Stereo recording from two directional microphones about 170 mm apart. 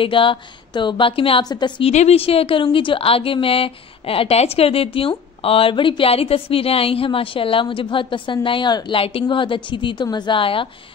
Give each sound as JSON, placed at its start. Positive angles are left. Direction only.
{"t": 0.0, "sound": "speech", "side_deg": 30}
{"t": 1.9, "sound": "speech", "side_deg": 40}